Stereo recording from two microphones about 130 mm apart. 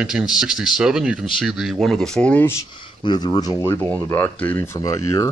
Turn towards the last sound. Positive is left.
turn(degrees=25)  # may be behind; listen again after turning